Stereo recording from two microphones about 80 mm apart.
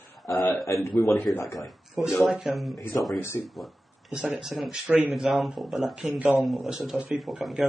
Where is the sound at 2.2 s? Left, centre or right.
Centre.